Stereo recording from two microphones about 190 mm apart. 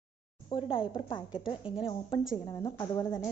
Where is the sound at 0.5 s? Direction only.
25° left (ahead or behind).